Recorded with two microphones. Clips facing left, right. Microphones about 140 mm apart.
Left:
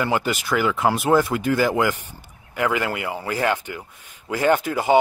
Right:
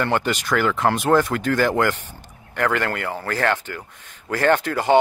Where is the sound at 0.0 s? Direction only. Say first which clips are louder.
Right 1 dB; 5° left (ahead or behind).